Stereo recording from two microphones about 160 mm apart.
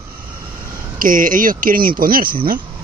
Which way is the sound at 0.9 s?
55° right (ahead or behind).